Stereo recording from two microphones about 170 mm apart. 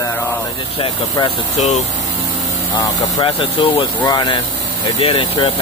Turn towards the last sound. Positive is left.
turn(degrees=35)  # may be behind; listen again after turning